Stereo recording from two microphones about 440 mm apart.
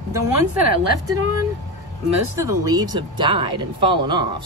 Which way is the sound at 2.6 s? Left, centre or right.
Centre.